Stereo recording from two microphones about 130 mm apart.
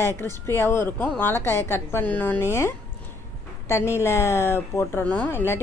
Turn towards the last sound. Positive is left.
turn(degrees=15)  # may be behind; listen again after turning